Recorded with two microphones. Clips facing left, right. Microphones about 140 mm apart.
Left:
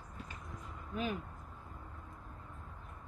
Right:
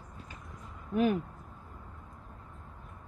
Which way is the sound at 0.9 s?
60° right (ahead or behind).